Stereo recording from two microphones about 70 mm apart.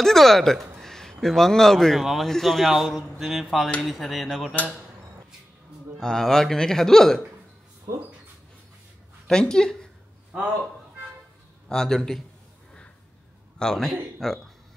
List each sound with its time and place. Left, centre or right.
0.0 s a man's voice: centre
6.0 s a man's voice: centre
9.3 s speech: centre
11.7 s speech: centre
13.6 s speech: centre
14.2 s a sound: centre